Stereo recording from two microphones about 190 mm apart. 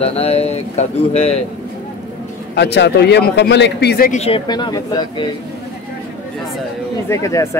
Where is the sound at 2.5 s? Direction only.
60° left (ahead or behind).